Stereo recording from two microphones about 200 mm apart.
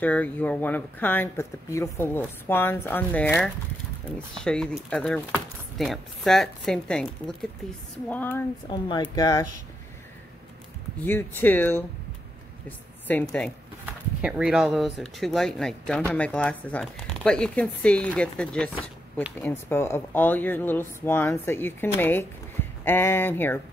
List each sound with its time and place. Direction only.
0.0 s speech: 10° left (ahead or behind)
8.6 s speech: 25° left (ahead or behind)
11.0 s a woman's voice: 10° left (ahead or behind)
13.8 s speech: 5° right (ahead or behind); by 23.6 s 10° left (ahead or behind)